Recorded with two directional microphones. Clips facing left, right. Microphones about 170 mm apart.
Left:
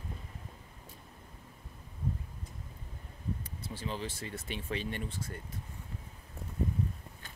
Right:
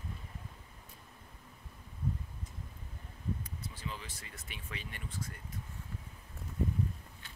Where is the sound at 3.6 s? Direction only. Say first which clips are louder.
Left 6 dB; 30° left (ahead or behind).